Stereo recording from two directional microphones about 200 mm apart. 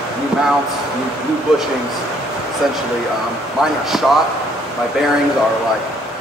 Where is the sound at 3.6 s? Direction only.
Centre (ahead or behind).